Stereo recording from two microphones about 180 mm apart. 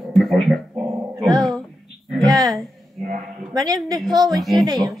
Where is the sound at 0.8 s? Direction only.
Centre (ahead or behind).